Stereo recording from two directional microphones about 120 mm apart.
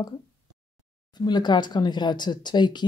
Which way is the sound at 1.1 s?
35° left (ahead or behind).